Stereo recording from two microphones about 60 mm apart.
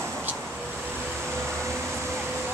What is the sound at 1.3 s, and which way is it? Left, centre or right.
Air conditioning, right.